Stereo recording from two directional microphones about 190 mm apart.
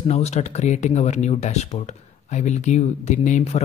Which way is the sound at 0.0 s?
35° left (ahead or behind).